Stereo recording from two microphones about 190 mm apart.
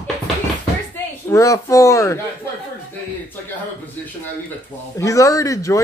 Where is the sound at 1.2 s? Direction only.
15° left (ahead or behind).